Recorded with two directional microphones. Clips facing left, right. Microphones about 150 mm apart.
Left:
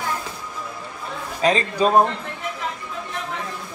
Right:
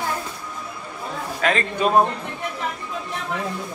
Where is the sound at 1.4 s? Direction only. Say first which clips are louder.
Left 3 dB; 30° left (ahead or behind).